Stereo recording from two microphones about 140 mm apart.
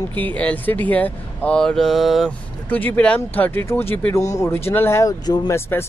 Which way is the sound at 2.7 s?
10° left (ahead or behind).